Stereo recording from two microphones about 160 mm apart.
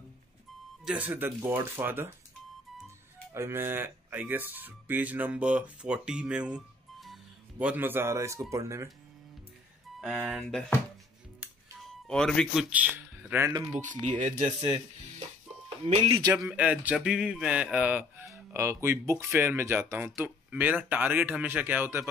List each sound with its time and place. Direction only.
0.8 s speech: 10° right (ahead or behind)
3.3 s speech: 15° right (ahead or behind)
9.9 s speech: centre (ahead or behind)
11.8 s a man's voice: 5° left (ahead or behind)
12.7 s speech: 10° right (ahead or behind)
14.1 s speech: 55° right (ahead or behind)
16.2 s speech: 20° right (ahead or behind)
16.4 s speech: 5° right (ahead or behind)